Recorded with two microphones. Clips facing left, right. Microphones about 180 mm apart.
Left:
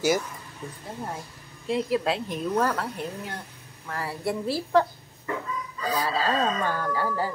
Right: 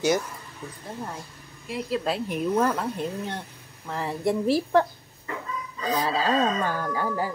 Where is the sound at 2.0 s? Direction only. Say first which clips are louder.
Right 1 dB; 5° right (ahead or behind).